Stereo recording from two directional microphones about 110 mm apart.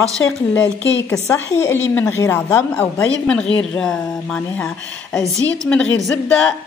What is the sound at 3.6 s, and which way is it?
Speech, 5° left (ahead or behind).